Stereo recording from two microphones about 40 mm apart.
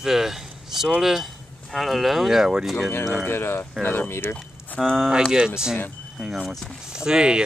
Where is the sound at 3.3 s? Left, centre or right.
Left.